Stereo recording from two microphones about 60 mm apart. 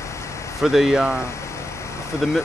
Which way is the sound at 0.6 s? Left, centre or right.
Centre.